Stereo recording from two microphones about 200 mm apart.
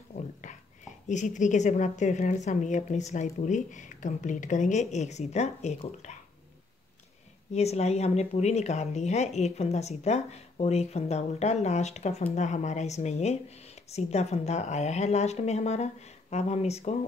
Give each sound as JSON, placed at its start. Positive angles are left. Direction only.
{"t": 1.0, "sound": "speech", "side_deg": 35}
{"t": 7.5, "sound": "speech", "side_deg": 30}